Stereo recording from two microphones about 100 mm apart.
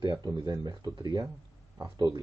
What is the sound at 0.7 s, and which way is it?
Speech, 40° right (ahead or behind).